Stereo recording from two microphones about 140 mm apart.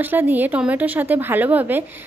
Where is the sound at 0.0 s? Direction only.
15° right (ahead or behind).